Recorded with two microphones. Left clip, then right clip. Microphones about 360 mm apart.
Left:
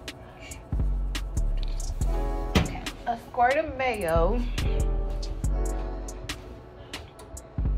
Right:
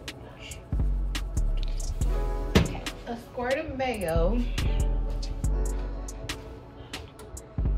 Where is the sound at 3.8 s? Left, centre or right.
Left.